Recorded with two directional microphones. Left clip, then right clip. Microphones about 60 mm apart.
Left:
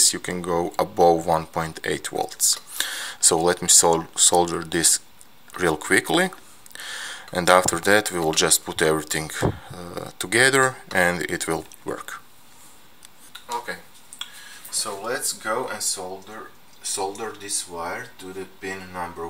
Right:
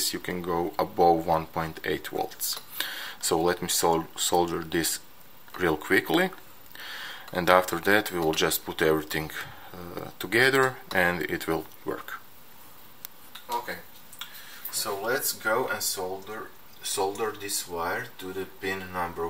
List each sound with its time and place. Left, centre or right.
0.0 s speech: left
13.5 s a sound: left
14.7 s speech: left; by 19.2 s centre